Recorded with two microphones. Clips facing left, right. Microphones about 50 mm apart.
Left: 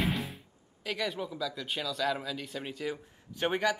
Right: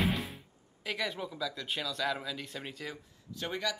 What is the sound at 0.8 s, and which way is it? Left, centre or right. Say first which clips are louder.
Speech: left 2 dB; centre.